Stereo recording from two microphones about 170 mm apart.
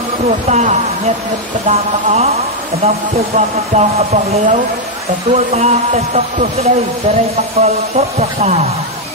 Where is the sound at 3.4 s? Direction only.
40° right (ahead or behind).